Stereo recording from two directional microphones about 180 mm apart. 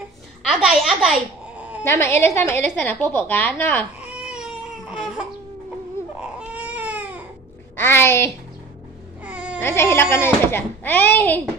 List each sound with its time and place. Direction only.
0.5 s a child's voice: 5° right (ahead or behind)
1.9 s a child's voice: 15° left (ahead or behind)
4.0 s baby cry: 5° right (ahead or behind)
7.7 s a child's voice: 10° left (ahead or behind)
9.2 s baby cry: 5° right (ahead or behind)
9.6 s a child's voice: 15° left (ahead or behind)